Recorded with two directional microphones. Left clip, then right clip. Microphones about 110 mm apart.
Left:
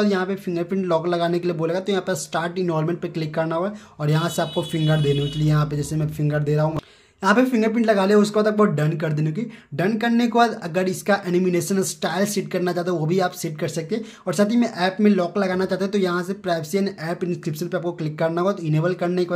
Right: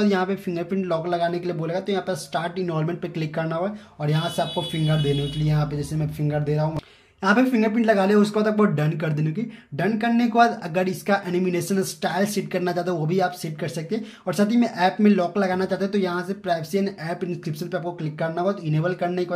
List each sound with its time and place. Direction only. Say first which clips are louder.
0.0 s speech: even; 15° left (ahead or behind)
0.7 s speech: left 3 dB; 45° left (ahead or behind)
7.2 s speech: left 2 dB; 30° left (ahead or behind)
9.8 s speech: left 1 dB; 40° left (ahead or behind)